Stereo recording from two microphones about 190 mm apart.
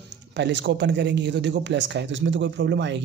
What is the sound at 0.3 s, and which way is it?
Speech, 70° right (ahead or behind).